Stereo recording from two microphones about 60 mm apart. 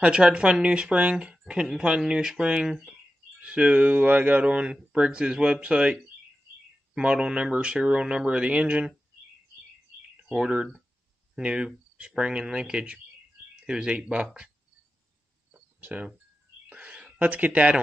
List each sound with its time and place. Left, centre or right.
0.0 s speech: centre
7.0 s speech: centre
10.2 s speech: centre
15.8 s speech: right
16.6 s a sound: right